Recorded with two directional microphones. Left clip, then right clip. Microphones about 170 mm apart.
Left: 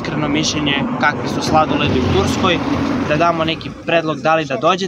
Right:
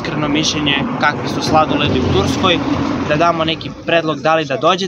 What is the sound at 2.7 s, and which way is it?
Speech, 85° left.